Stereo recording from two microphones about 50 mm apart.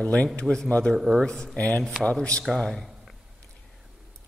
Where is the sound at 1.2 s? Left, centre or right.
Centre.